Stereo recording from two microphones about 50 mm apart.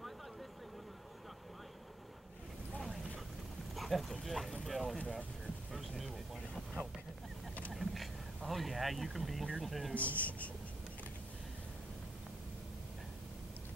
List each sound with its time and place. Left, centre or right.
3.7 s speech: centre
5.7 s a sound: centre
6.8 s vehicle: right
7.7 s a sound: centre
8.5 s speech: centre
9.9 s speech: left